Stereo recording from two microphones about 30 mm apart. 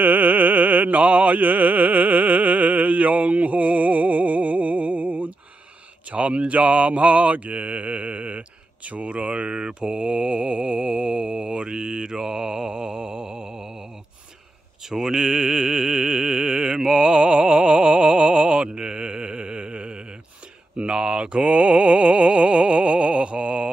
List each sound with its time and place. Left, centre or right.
0.0 s music: right
6.0 s mantra: right
9.6 s mantra: right; by 13.8 s centre
14.9 s music: centre; by 18.9 s right
18.9 s chant: right
20.7 s a sound: right